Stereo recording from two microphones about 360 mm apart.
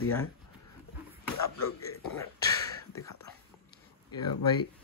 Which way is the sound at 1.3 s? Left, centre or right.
Left.